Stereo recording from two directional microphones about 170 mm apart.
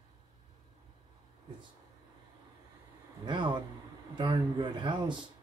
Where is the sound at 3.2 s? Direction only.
30° right (ahead or behind).